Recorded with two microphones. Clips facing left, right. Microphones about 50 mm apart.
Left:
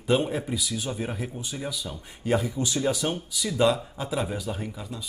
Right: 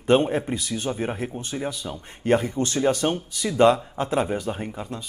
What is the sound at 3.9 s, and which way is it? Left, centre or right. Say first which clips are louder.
A man's voice: right 6 dB; right.